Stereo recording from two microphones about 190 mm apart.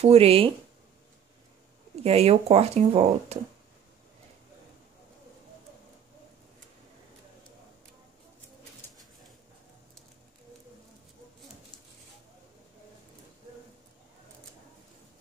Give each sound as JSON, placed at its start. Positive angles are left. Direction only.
{"t": 0.0, "sound": "speech", "side_deg": -30}
{"t": 2.0, "sound": "speech", "side_deg": -35}